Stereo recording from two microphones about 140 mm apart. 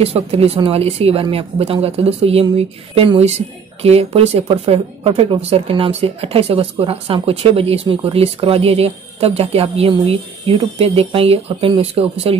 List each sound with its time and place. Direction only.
0.0 s speech: 45° right (ahead or behind)